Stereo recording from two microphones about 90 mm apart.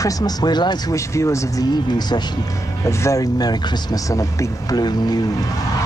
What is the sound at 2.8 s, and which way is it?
Speech, 35° left (ahead or behind).